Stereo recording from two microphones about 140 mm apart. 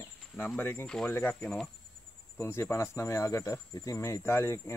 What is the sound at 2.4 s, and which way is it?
Speech, 15° left (ahead or behind).